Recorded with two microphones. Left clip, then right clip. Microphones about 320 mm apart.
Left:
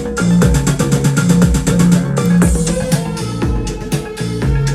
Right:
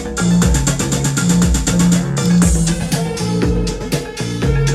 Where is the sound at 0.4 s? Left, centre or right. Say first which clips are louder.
Left 2 dB; left.